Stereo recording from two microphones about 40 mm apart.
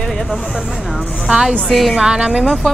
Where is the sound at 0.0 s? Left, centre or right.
Centre.